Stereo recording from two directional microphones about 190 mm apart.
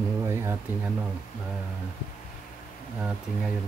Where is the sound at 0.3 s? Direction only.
15° right (ahead or behind).